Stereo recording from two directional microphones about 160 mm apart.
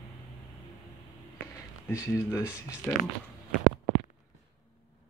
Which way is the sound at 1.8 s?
15° left (ahead or behind).